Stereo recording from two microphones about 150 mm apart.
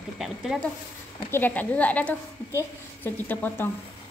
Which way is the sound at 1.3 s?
10° left (ahead or behind).